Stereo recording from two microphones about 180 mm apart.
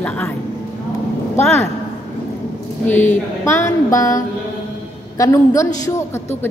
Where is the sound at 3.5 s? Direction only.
15° left (ahead or behind).